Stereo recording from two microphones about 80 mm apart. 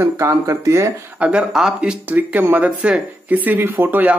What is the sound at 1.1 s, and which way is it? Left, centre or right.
Speech, centre.